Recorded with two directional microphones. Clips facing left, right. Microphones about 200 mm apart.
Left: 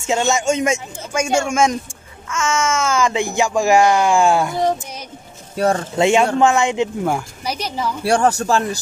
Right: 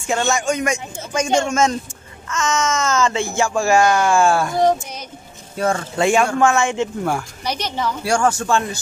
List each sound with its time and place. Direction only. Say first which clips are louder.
0.0 s speech: left 2 dB; 20° left (ahead or behind)
1.1 s speech: even; 10° left (ahead or behind)
5.9 s speech: left 1 dB; 20° left (ahead or behind)
7.2 s speech: even; 5° left (ahead or behind)
8.0 s speech: left 3 dB; 35° left (ahead or behind)